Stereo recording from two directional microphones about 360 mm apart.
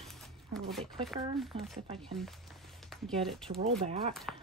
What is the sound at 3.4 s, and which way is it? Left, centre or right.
Speech, centre.